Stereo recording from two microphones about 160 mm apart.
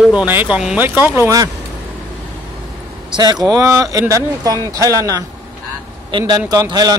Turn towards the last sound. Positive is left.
turn(degrees=-25)  # may be behind; listen again after turning